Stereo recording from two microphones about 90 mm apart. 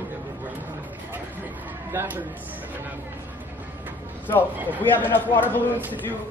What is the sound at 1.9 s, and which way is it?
Speech, 25° right (ahead or behind).